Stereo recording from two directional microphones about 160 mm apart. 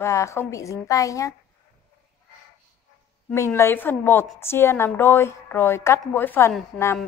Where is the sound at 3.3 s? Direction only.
15° left (ahead or behind).